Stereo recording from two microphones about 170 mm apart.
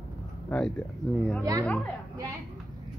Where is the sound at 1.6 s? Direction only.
10° left (ahead or behind).